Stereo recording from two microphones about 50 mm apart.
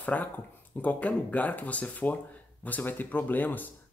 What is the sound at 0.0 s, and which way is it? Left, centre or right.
Speech, left.